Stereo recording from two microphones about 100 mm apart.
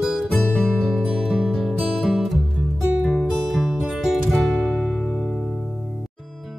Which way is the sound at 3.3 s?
5° left (ahead or behind).